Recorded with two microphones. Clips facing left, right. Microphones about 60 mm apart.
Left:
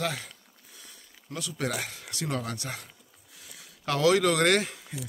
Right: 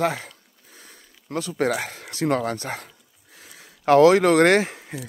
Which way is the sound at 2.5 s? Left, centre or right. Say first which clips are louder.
Right 7 dB; right.